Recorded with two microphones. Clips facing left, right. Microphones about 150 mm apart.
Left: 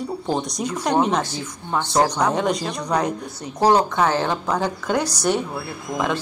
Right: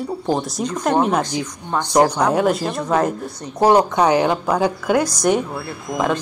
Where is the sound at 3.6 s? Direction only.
15° right (ahead or behind).